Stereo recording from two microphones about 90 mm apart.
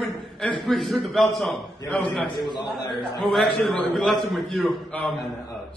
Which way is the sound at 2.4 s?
55° left (ahead or behind).